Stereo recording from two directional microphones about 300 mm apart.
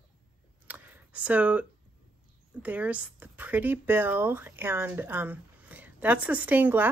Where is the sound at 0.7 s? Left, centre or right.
Centre.